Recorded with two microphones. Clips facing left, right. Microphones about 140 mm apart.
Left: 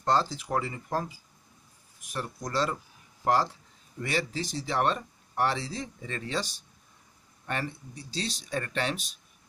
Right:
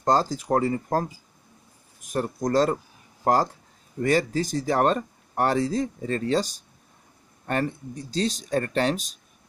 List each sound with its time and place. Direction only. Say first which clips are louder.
0.0 s speech: right 4 dB; 40° right (ahead or behind)